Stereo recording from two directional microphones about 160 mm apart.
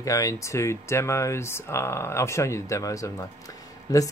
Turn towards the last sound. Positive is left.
turn(degrees=25)  # may be behind; listen again after turning